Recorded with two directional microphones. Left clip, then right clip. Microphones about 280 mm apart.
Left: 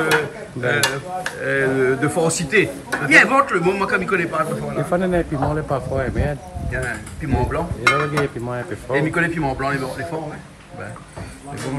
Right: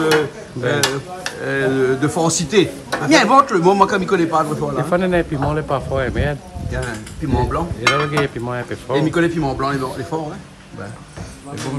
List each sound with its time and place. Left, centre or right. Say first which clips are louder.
0.6 s a man's voice: right 1 dB; centre